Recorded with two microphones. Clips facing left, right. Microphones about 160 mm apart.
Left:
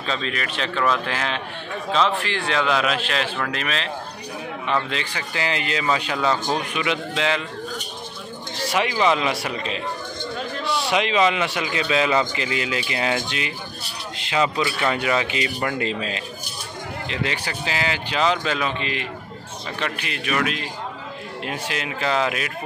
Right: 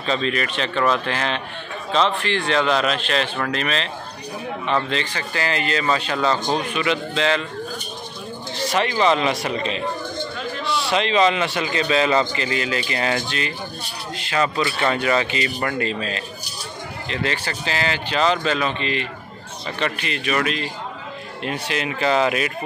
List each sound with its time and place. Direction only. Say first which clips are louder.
0.0 s a man's voice: right 4 dB; centre (ahead or behind)
8.6 s a man's voice: right 1 dB; 10° left (ahead or behind)
14.1 s a sound: even; 20° left (ahead or behind)
14.6 s a man's voice: right 1 dB; 10° left (ahead or behind)